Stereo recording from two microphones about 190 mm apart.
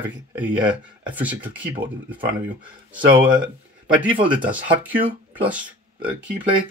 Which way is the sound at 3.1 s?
25° right (ahead or behind).